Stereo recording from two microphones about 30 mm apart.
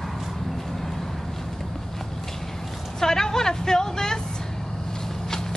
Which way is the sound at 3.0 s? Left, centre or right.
Centre.